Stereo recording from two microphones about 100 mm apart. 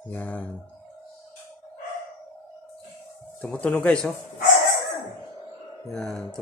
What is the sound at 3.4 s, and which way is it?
Speech, 10° left (ahead or behind).